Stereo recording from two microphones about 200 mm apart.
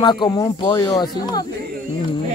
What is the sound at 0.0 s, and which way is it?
Speech, 20° left (ahead or behind).